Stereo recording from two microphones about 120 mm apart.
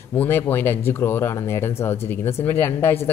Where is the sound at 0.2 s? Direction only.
20° left (ahead or behind).